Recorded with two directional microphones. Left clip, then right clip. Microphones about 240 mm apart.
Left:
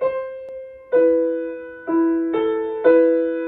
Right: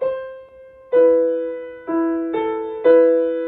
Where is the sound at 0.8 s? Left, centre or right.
Centre.